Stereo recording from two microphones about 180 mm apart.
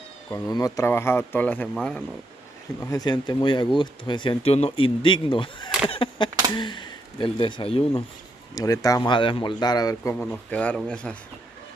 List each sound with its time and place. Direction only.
0.3 s speech: 20° left (ahead or behind); by 2.0 s 5° left (ahead or behind)
2.8 s speech: 20° left (ahead or behind)
8.5 s speech: 20° left (ahead or behind)
10.1 s speech: 10° left (ahead or behind)